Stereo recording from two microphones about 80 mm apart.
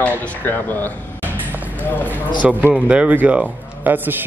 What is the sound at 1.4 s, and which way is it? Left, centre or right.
Basketball bounce, right.